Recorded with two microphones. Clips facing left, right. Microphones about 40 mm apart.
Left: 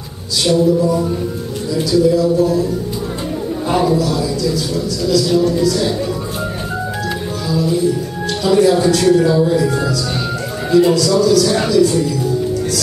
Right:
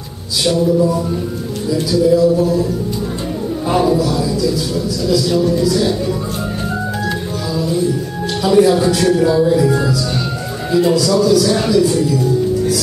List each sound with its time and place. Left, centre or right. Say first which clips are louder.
0.5 s speech: left 1 dB; centre
7.5 s speech: left 2 dB; centre